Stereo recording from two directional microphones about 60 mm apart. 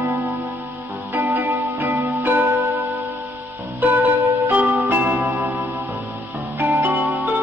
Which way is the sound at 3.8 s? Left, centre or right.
Right.